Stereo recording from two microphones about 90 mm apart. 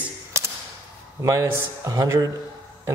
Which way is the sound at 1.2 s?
30° right (ahead or behind).